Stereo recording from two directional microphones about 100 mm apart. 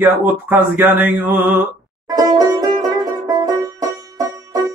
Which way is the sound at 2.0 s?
40° right (ahead or behind).